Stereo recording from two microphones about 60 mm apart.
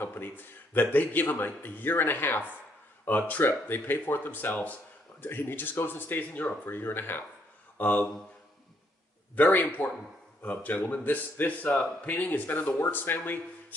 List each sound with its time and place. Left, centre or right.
0.0 s speech: left
9.3 s speech: left